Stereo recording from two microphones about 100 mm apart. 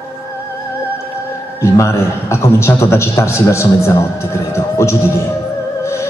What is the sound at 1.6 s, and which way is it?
A man's voice, 30° left (ahead or behind).